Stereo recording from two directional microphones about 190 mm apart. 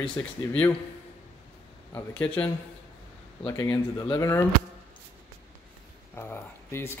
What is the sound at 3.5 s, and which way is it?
Speech, 15° left (ahead or behind).